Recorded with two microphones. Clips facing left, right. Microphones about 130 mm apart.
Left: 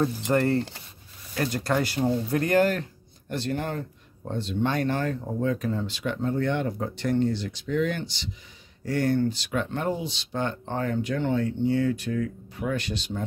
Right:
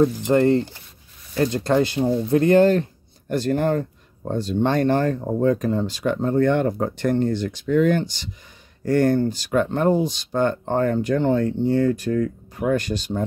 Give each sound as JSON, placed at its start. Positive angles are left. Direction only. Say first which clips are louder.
{"t": 0.0, "sound": "speech", "louder": "right 7 dB", "side_deg": -20}
{"t": 3.3, "sound": "speech", "louder": "right 9 dB", "side_deg": -45}